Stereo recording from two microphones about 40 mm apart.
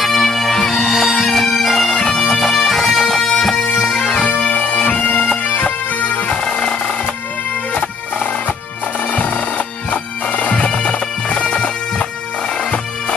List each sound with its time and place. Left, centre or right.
0.0 s bagpipes: centre
4.3 s bagpipes: left
9.8 s bagpipes: left